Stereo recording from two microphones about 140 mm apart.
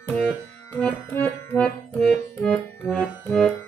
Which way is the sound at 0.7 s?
15° left (ahead or behind).